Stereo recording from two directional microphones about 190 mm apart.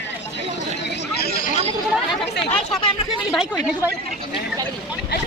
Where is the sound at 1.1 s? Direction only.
55° left (ahead or behind).